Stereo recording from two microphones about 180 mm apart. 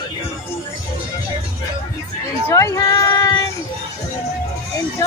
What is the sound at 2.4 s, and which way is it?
Speech, 15° left (ahead or behind).